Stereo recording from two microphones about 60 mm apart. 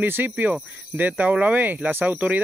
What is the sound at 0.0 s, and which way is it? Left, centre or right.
Speech, right.